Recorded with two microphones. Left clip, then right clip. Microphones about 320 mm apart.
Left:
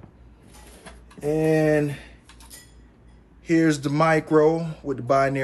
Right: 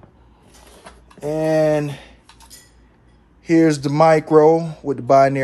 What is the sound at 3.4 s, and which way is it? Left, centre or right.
Speech, right.